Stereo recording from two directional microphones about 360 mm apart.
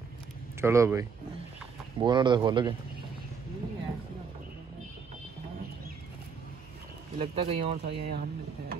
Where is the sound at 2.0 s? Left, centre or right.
Centre.